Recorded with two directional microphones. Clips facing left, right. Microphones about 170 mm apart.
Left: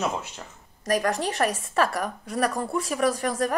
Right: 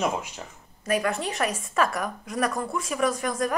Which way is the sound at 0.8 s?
40° left (ahead or behind).